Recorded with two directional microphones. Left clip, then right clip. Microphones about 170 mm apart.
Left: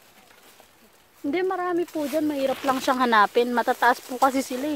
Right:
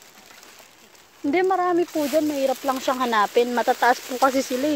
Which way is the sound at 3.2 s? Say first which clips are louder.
Even; 20° left (ahead or behind).